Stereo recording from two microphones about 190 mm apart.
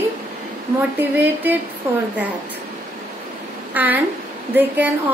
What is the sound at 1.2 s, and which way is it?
Speech, 10° right (ahead or behind).